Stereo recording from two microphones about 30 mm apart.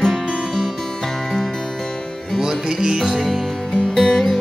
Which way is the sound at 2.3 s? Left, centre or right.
Right.